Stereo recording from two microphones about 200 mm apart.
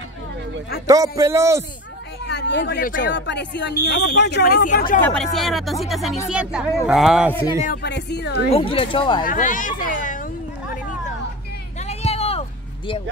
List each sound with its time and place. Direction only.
0.8 s speech: 15° right (ahead or behind)
2.2 s speech: 60° left (ahead or behind)
4.6 s speech: 40° left (ahead or behind)
5.0 s speech: 5° left (ahead or behind)
7.6 s speech: 50° left (ahead or behind)
8.5 s speech: 30° left (ahead or behind)
9.2 s speech: 40° left (ahead or behind)
11.8 s a sound: 30° left (ahead or behind)